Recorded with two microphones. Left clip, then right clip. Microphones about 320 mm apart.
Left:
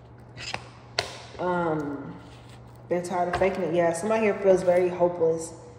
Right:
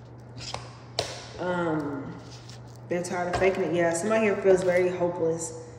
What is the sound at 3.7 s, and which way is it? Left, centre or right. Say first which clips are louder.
Speech: left 1 dB; left.